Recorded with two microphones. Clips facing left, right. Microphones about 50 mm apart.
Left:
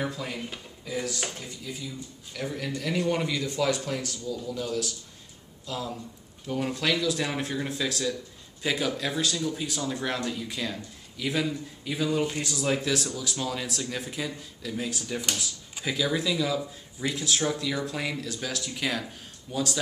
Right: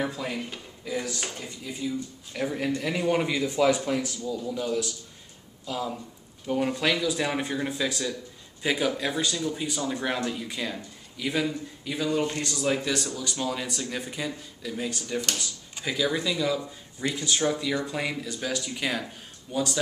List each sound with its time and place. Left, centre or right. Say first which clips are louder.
0.0 s speech: right 2 dB; centre
1.4 s speech: right 4 dB; centre